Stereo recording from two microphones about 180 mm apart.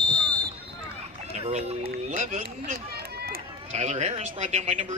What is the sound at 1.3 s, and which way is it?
Speech, 40° right (ahead or behind).